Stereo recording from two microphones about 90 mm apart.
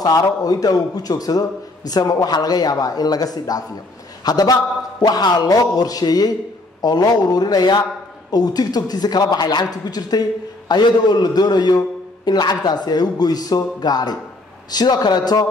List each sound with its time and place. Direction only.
0.0 s a man's voice: 45° left (ahead or behind)